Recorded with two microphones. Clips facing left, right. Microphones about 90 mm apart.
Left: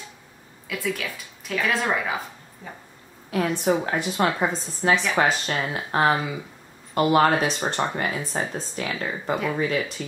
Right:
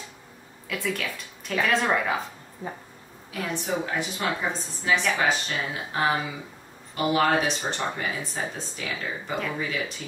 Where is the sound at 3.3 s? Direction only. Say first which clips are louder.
Left 7 dB; 60° left (ahead or behind).